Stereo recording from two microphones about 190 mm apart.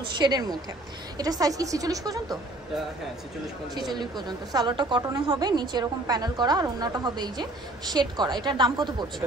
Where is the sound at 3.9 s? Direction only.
20° right (ahead or behind).